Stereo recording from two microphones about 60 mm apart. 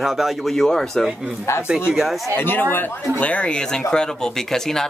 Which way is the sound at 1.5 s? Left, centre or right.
Left.